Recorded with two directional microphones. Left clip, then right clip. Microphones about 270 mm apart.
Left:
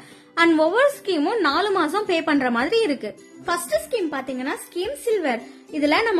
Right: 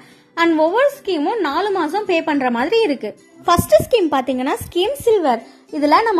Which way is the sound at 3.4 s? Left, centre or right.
Right.